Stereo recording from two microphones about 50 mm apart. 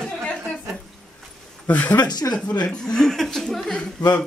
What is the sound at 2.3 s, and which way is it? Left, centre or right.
A woman's voice, centre.